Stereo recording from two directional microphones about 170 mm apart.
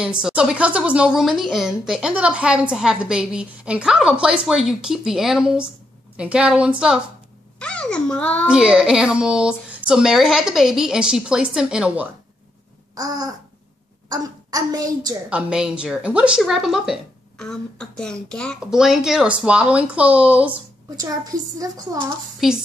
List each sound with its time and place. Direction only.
0.0 s a woman's voice: 5° right (ahead or behind)
7.5 s a child's voice: 5° left (ahead or behind)
8.5 s a woman's voice: 5° right (ahead or behind)
12.9 s babbling: 20° right (ahead or behind)
14.0 s a child's voice: 20° right (ahead or behind)
15.2 s a woman's voice: 5° right (ahead or behind)
20.9 s a woman's voice: 20° right (ahead or behind)
22.4 s a woman's voice: 5° right (ahead or behind)